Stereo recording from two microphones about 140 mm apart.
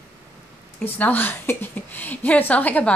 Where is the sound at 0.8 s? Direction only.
10° left (ahead or behind).